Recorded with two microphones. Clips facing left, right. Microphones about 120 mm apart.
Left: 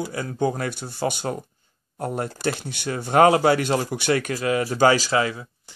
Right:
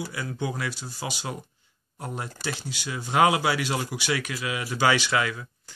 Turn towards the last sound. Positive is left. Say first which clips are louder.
# left 4 dB
turn(degrees=30)  # may be behind; listen again after turning